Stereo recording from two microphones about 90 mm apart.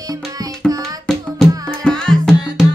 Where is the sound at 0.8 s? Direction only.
5° left (ahead or behind).